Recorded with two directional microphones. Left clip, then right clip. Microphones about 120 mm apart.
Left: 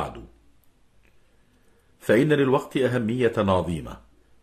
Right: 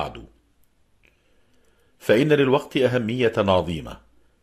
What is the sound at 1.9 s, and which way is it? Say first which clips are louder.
A man's voice: right 2 dB; 25° right (ahead or behind).